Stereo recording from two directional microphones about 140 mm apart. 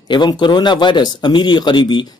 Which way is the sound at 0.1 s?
35° left (ahead or behind).